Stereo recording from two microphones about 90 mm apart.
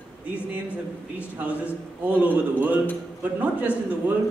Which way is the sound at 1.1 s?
15° right (ahead or behind).